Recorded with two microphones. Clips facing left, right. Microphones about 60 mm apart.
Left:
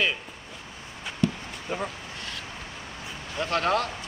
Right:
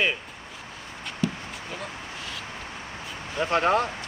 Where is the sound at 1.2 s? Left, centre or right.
Centre.